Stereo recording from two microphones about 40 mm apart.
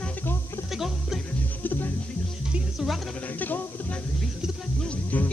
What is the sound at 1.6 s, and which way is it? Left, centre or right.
Music, left.